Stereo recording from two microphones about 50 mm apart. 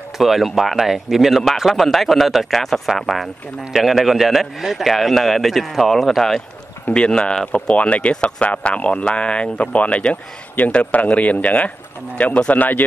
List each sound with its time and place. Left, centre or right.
0.2 s a man's voice: centre
6.9 s speech: centre; by 12.8 s left